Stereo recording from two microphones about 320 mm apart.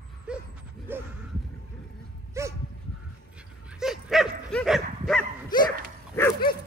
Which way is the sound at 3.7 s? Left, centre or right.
Centre.